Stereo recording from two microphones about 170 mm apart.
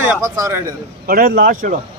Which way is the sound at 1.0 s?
60° right (ahead or behind).